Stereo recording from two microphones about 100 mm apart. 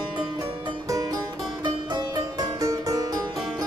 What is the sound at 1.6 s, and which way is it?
Music, 45° right (ahead or behind).